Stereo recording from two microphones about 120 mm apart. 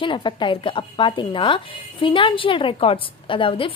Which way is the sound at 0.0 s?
45° left (ahead or behind).